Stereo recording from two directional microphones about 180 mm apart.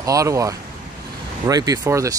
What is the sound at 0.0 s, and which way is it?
Speech, 20° right (ahead or behind).